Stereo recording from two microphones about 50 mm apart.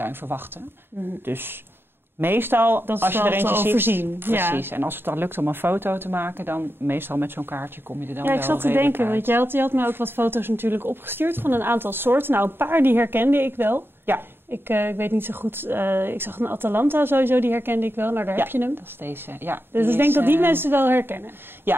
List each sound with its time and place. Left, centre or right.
0.0 s speech: right